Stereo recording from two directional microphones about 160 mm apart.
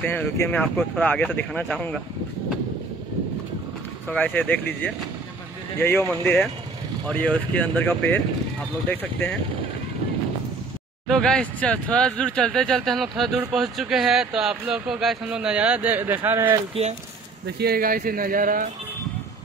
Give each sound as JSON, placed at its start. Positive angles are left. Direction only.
{"t": 0.0, "sound": "speech", "side_deg": 10}
{"t": 4.1, "sound": "speech", "side_deg": 10}
{"t": 11.1, "sound": "speech", "side_deg": 5}
{"t": 17.6, "sound": "speech", "side_deg": -70}